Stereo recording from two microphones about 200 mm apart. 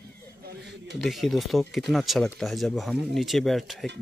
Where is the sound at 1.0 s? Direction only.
Centre (ahead or behind).